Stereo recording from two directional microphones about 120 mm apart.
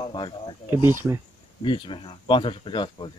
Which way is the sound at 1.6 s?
45° left (ahead or behind).